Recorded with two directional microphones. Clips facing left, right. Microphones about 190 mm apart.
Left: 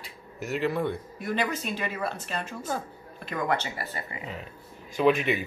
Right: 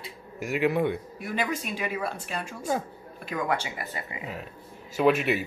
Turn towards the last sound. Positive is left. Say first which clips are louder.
# even
turn(degrees=-5)  # may be behind; listen again after turning